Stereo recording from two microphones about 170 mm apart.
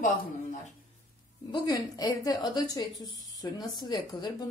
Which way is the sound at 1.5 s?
25° left (ahead or behind).